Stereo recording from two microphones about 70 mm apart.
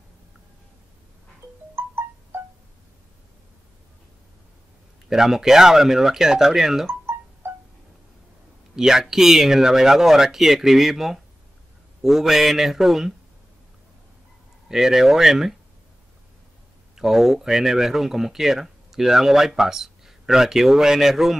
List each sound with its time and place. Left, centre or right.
1.8 s wind chime: right
5.1 s speech: centre
6.9 s music: right
8.7 s speech: centre
14.7 s speech: centre
16.9 s speech: centre